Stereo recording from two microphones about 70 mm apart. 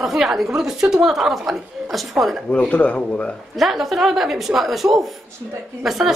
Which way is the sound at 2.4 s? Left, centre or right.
Centre.